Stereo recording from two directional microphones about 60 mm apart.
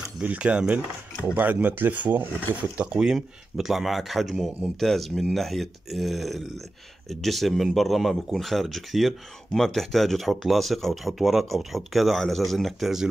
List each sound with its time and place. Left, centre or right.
0.2 s speech: right
1.3 s speech: right
2.8 s speech: centre